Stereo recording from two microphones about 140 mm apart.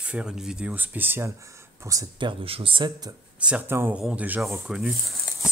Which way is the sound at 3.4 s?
15° right (ahead or behind).